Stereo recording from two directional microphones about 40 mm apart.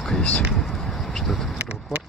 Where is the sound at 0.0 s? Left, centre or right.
Centre.